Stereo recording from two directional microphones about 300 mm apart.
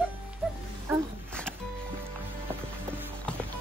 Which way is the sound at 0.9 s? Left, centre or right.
Centre.